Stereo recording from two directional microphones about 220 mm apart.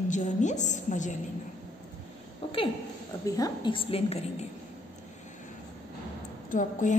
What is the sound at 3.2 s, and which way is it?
A woman's voice, 15° left (ahead or behind).